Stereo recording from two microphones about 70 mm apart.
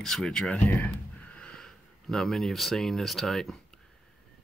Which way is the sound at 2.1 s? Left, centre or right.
Centre.